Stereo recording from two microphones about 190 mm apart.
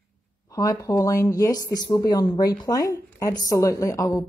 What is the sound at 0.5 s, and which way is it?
Speech, 20° left (ahead or behind).